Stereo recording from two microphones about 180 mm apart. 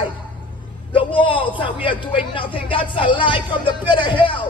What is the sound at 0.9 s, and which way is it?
A man's voice, 30° left (ahead or behind).